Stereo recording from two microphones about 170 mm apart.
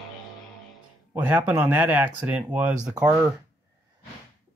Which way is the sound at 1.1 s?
10° right (ahead or behind).